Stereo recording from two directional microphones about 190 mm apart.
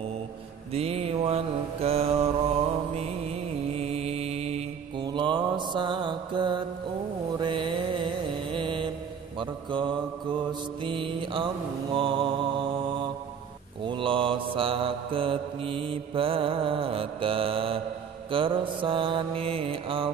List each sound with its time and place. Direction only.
0.7 s mantra: 30° right (ahead or behind)
3.7 s mantra: 30° right (ahead or behind)
13.8 s mantra: 25° right (ahead or behind)